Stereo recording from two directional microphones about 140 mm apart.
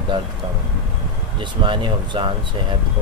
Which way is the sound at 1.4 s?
35° right (ahead or behind).